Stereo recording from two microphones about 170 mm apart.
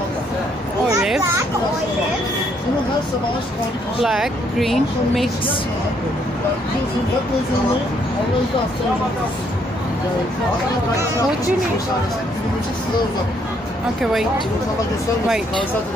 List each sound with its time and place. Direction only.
4.0 s speech: centre (ahead or behind)